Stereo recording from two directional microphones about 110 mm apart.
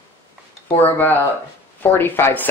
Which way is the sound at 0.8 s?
20° left (ahead or behind).